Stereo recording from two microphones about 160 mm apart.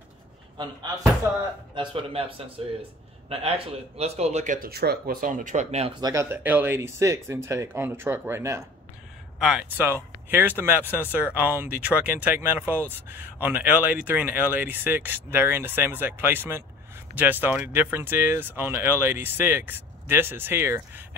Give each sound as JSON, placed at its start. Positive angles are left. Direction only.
{"t": 1.8, "sound": "speech", "side_deg": -35}
{"t": 4.6, "sound": "speech", "side_deg": -80}
{"t": 5.9, "sound": "speech", "side_deg": -25}
{"t": 6.3, "sound": "speech", "side_deg": -10}
{"t": 9.4, "sound": "speech", "side_deg": -5}